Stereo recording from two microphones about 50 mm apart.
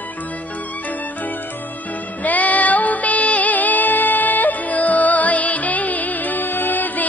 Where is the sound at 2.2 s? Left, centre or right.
Left.